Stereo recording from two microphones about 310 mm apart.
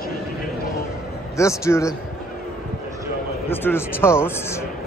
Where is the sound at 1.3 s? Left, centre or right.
Centre.